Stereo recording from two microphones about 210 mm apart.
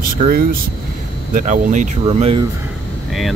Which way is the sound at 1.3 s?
35° right (ahead or behind).